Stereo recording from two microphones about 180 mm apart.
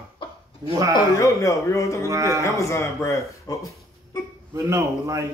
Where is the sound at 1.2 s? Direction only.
15° left (ahead or behind).